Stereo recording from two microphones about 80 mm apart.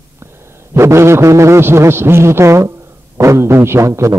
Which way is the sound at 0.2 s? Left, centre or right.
Right.